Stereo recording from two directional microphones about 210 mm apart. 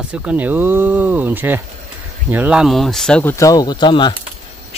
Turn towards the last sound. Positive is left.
turn(degrees=20)  # may be behind; listen again after turning